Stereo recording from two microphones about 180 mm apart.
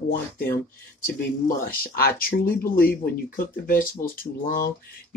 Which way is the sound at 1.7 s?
55° left (ahead or behind).